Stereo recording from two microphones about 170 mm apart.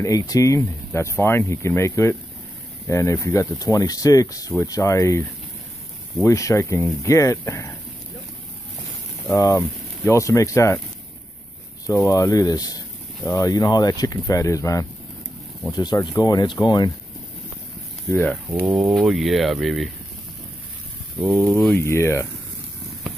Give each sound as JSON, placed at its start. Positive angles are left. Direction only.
{"t": 0.0, "sound": "speech", "side_deg": 20}
{"t": 6.2, "sound": "speech", "side_deg": 20}
{"t": 9.3, "sound": "speech", "side_deg": 15}
{"t": 12.1, "sound": "speech", "side_deg": 20}
{"t": 18.1, "sound": "speech", "side_deg": 10}
{"t": 18.5, "sound": "speech", "side_deg": -10}
{"t": 21.5, "sound": "speech", "side_deg": 15}